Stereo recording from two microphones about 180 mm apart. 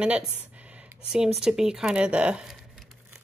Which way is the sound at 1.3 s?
5° right (ahead or behind).